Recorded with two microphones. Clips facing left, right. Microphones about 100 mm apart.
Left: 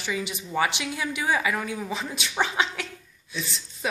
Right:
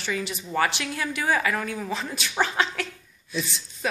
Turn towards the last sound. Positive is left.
turn(degrees=20)  # may be behind; listen again after turning